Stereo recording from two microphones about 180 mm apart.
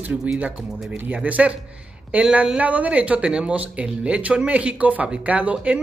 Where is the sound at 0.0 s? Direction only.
5° right (ahead or behind).